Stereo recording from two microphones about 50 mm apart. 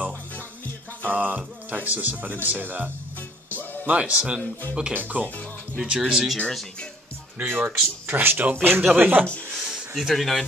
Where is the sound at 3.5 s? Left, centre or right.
Right.